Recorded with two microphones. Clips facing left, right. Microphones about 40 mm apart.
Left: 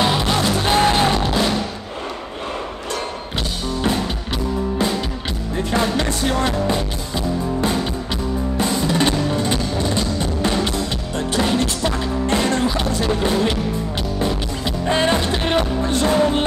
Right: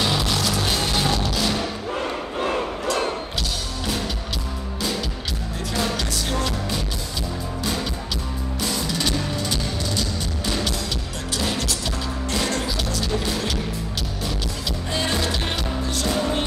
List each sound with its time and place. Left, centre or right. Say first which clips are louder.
0.0 s music: left 5 dB; left
5.7 s music: left 5 dB; left
8.5 s music: left 6 dB; left
14.9 s music: left 7 dB; left